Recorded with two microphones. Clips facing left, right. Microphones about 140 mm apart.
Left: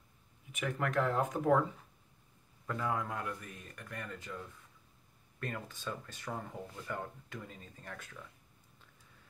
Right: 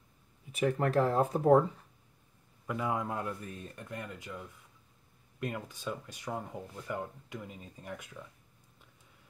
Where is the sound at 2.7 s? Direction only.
15° right (ahead or behind).